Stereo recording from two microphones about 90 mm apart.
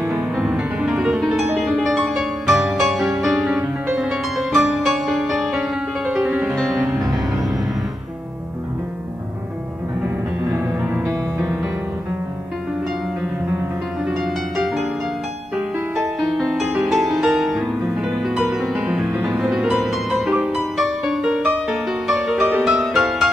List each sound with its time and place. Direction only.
0.6 s music: 10° right (ahead or behind)
6.2 s music: 20° right (ahead or behind)
6.9 s music: centre (ahead or behind)
14.1 s music: centre (ahead or behind)
16.2 s music: centre (ahead or behind)